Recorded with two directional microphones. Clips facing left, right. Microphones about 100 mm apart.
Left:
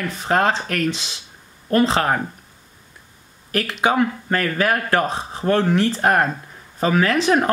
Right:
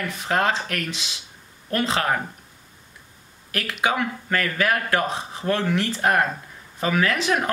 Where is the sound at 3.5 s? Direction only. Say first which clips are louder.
Left 4 dB; 35° left (ahead or behind).